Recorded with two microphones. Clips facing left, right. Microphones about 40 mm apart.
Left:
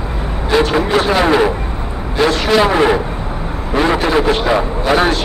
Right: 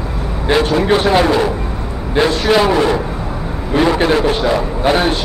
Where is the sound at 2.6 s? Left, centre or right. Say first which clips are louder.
Left 1 dB; left.